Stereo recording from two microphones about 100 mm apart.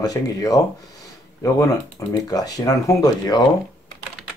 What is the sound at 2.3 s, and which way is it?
Speech, 40° left (ahead or behind).